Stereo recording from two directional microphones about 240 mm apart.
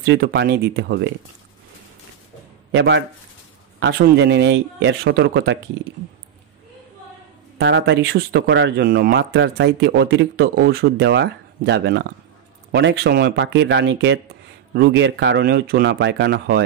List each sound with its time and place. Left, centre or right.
0.0 s speech: right
2.7 s speech: right
7.5 s speech: right